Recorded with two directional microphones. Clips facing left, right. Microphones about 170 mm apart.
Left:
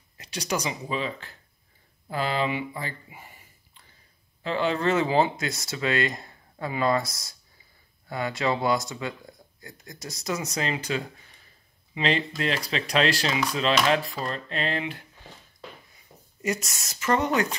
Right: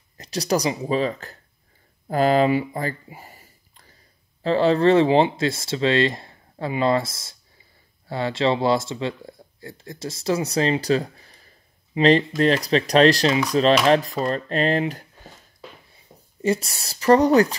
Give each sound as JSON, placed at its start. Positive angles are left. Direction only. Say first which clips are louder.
{"t": 0.2, "sound": "speech", "louder": "right 7 dB", "side_deg": -35}
{"t": 16.1, "sound": "a sound", "louder": "right 2 dB", "side_deg": -15}
{"t": 16.4, "sound": "speech", "louder": "right 7 dB", "side_deg": -30}